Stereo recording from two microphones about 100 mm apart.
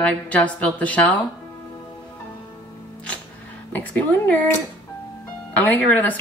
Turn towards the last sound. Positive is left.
turn(degrees=15)  # may be behind; listen again after turning